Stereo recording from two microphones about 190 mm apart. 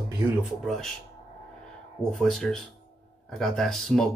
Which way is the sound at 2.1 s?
Centre (ahead or behind).